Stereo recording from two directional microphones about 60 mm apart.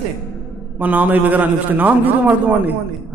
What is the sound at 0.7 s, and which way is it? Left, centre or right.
A man's voice, right.